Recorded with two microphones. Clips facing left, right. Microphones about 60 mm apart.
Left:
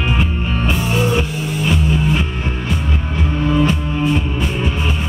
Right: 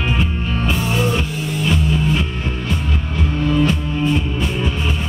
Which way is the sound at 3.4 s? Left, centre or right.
Left.